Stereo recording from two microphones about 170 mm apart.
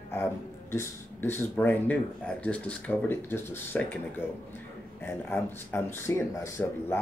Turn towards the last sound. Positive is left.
turn(degrees=15)  # may be behind; listen again after turning